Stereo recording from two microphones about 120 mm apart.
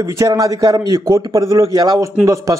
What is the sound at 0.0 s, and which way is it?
A man's voice, 30° right (ahead or behind).